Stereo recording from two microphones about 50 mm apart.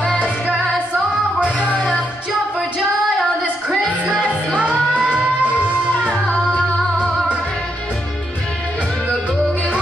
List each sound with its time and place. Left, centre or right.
3.6 s music: right